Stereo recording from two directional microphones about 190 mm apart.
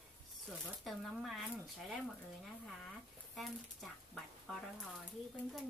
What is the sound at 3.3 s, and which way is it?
Speech, centre (ahead or behind).